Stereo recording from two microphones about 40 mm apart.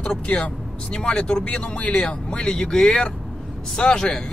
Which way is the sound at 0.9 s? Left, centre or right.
Centre.